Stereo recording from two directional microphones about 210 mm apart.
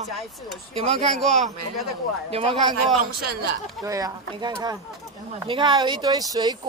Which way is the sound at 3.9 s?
15° right (ahead or behind).